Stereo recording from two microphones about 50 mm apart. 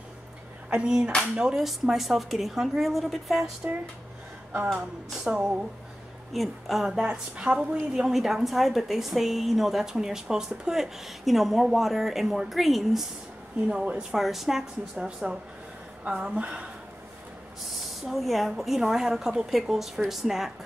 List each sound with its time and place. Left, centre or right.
0.7 s a sound: centre
1.3 s a woman's voice: centre
5.1 s a woman's voice: centre
6.3 s a woman's voice: centre
7.0 s a woman's voice: centre
13.7 s a woman's voice: centre
14.1 s a woman's voice: centre
16.2 s a woman's voice: right
18.1 s a woman's voice: centre